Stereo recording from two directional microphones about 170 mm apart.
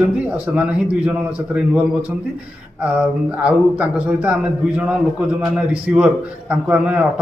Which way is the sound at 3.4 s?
5° right (ahead or behind).